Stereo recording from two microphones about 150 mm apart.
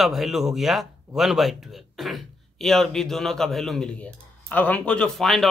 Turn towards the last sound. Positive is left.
turn(degrees=0)  # may be behind; listen again after turning